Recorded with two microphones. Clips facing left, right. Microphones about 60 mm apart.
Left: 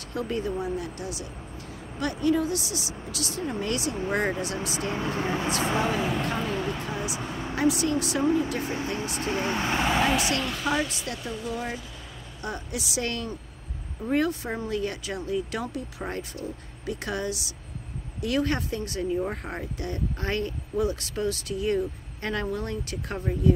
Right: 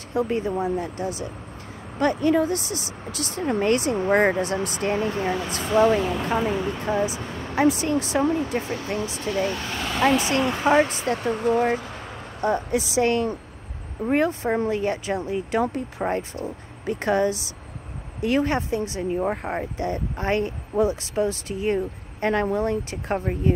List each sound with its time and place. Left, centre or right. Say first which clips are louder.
0.1 s speech: right 5 dB; right
5.8 s speech: right 7 dB; centre
6.2 s speech: right 5 dB; centre
6.8 s speech: right 7 dB; right
8.9 s speech: right 3 dB; left
10.2 s speech: right 6 dB; right
11.2 s speech: right 12 dB; right
12.4 s speech: right 11 dB; right